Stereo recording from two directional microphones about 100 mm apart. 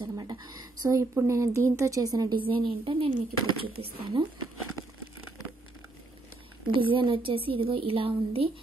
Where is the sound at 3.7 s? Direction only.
75° right (ahead or behind).